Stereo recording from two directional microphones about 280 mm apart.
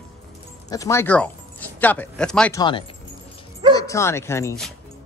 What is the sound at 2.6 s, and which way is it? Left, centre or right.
Speech, centre.